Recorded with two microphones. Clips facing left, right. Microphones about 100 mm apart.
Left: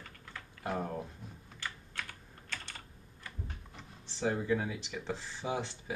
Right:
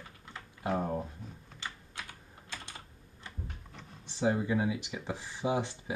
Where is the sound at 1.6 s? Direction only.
20° right (ahead or behind).